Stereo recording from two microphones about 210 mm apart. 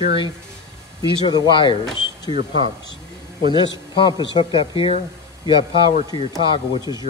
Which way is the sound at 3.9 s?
20° left (ahead or behind).